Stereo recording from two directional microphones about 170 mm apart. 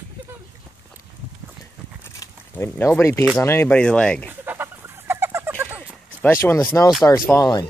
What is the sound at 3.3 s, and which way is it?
Speech, 15° left (ahead or behind).